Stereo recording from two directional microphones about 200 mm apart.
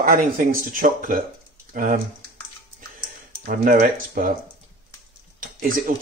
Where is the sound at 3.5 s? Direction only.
40° right (ahead or behind).